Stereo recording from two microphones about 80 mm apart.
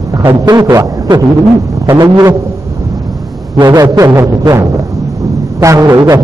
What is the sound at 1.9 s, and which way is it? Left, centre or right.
Speech, right.